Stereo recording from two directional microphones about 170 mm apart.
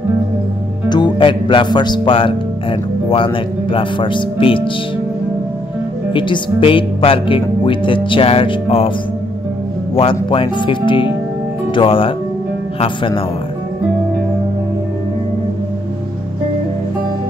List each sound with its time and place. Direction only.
0.8 s speech: 25° left (ahead or behind)
6.1 s speech: 30° left (ahead or behind)
10.3 s speech: 30° left (ahead or behind)